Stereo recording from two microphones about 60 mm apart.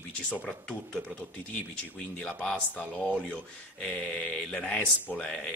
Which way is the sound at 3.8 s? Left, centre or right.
Centre.